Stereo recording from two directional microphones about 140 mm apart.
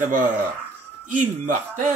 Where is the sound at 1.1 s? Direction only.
70° right (ahead or behind).